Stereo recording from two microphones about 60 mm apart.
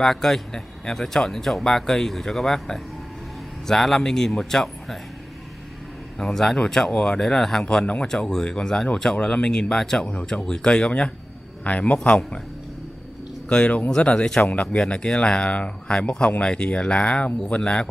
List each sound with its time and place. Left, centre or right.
0.0 s speech: centre
6.1 s speech: centre
7.8 s a man's voice: left
8.1 s a man's voice: centre
13.5 s a man's voice: centre
14.5 s a man's voice: left
14.8 s speech: centre